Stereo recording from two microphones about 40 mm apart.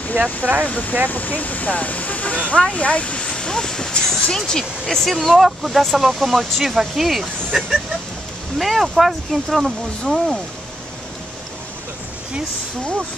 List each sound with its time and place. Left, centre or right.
0.7 s speech: left; by 5.1 s centre
5.1 s speech: centre